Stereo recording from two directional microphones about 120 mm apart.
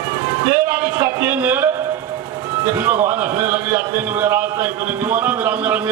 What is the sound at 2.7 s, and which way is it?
A man's voice, 25° right (ahead or behind).